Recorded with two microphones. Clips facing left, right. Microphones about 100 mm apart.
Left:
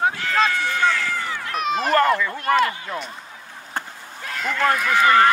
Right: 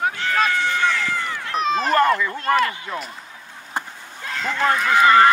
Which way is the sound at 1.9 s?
25° right (ahead or behind).